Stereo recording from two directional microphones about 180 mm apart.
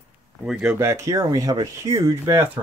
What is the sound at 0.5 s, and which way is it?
Speech, 5° right (ahead or behind).